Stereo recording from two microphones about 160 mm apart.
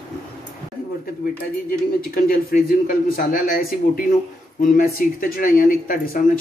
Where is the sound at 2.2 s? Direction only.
65° left (ahead or behind).